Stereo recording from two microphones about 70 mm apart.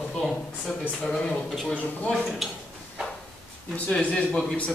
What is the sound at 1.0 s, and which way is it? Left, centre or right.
A man's voice, centre.